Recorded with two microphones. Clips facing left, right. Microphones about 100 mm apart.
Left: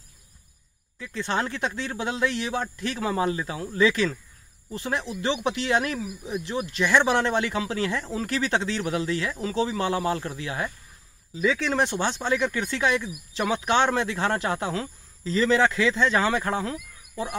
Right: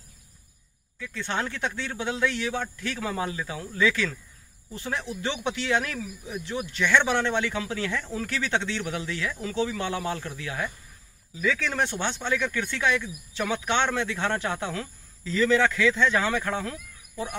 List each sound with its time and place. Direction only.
0.9 s speech: 30° left (ahead or behind)